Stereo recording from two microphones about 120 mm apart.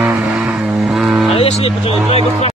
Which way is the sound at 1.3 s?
60° left (ahead or behind).